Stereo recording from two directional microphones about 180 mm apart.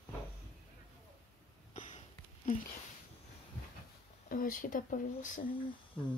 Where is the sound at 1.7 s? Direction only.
45° left (ahead or behind).